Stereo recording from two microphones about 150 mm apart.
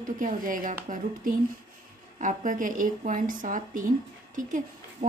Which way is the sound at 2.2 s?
60° right (ahead or behind).